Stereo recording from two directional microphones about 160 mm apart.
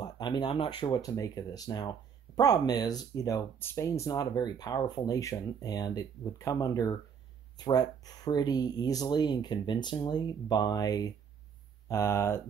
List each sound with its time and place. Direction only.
0.0 s speech: 25° left (ahead or behind)